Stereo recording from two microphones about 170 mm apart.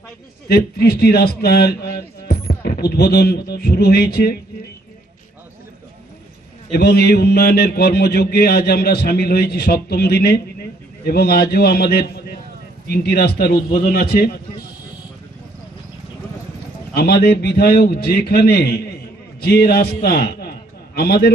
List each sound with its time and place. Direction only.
0.5 s speech: 65° left (ahead or behind)
6.7 s speech: 70° left (ahead or behind)
16.9 s a man's voice: 70° left (ahead or behind)